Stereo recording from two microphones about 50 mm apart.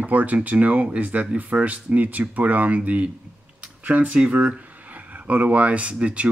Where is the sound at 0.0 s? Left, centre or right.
Right.